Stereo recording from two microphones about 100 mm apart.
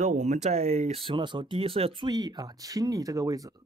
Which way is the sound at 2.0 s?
40° right (ahead or behind).